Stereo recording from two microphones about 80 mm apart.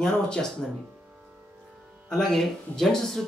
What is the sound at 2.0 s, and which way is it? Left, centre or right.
Speech, centre.